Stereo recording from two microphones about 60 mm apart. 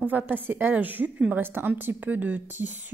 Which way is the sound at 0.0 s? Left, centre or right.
Right.